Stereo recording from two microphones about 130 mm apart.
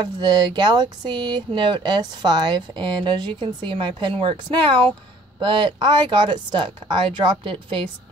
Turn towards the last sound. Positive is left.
turn(degrees=-40)  # may be behind; listen again after turning